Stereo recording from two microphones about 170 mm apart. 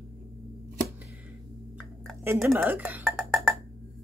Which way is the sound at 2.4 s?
15° right (ahead or behind).